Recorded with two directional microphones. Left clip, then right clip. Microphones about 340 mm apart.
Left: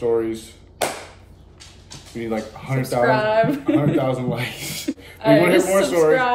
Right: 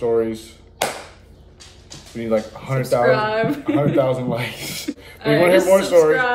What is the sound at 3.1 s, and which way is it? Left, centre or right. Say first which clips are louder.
Speech: even; centre.